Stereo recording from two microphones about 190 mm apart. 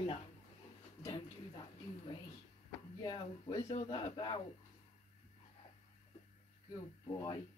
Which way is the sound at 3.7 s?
35° left (ahead or behind).